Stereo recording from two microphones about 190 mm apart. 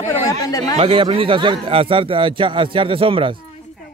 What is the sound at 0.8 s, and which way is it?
A man's voice, 30° right (ahead or behind).